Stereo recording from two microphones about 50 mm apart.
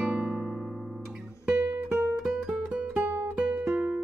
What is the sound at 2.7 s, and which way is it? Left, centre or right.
Music, right.